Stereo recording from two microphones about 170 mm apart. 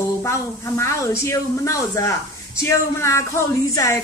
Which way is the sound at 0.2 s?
15° left (ahead or behind).